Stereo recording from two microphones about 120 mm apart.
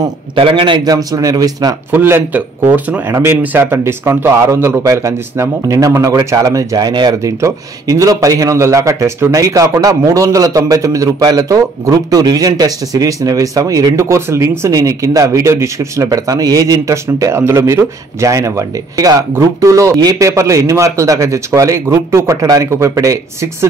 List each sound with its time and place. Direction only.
0.4 s a man's voice: 45° right (ahead or behind)
0.8 s speech: 30° right (ahead or behind)
1.9 s speech: 20° right (ahead or behind); by 7.2 s 35° right (ahead or behind)
7.2 s speech: 25° right (ahead or behind)